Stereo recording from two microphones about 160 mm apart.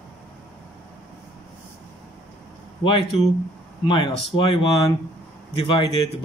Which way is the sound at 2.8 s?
30° left (ahead or behind).